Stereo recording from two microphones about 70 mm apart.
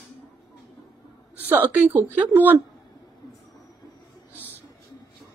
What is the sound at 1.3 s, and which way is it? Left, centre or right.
A woman's voice, right.